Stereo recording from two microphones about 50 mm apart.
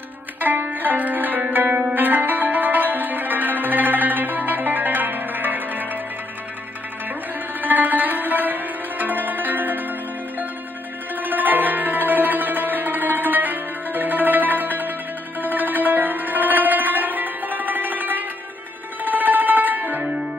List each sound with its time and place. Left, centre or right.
0.4 s music: right
7.6 s sitar: right
11.1 s music: right